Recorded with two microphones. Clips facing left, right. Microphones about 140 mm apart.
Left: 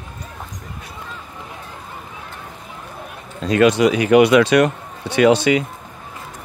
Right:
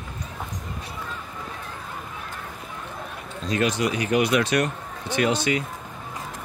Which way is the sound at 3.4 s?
70° left (ahead or behind).